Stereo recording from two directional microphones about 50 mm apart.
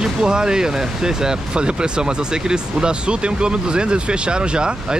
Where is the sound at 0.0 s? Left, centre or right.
Centre.